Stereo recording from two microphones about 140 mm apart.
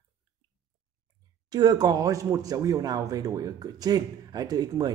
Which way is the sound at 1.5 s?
30° right (ahead or behind).